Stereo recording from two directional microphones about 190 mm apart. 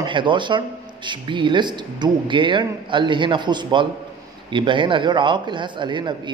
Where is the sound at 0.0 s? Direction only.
25° right (ahead or behind).